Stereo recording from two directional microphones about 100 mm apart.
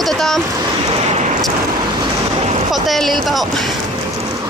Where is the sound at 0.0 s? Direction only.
5° left (ahead or behind).